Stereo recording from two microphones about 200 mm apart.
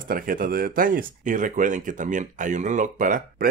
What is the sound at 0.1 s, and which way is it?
Speech, 45° right (ahead or behind).